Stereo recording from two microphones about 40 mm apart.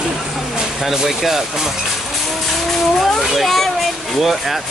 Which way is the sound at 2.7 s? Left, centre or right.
Centre.